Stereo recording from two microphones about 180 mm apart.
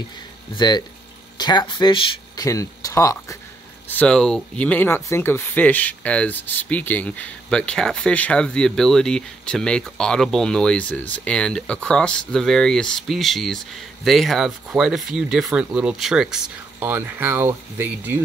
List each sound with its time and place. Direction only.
0.6 s speech: 25° left (ahead or behind)
3.9 s speech: 5° left (ahead or behind); by 18.2 s 10° right (ahead or behind)